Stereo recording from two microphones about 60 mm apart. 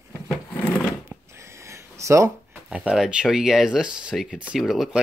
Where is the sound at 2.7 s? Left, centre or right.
Centre.